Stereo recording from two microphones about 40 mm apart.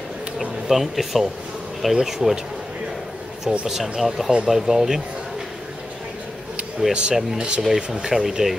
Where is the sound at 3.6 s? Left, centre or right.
Centre.